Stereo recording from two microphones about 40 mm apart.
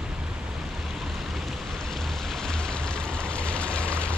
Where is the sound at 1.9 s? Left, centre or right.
Centre; by 4.1 s left.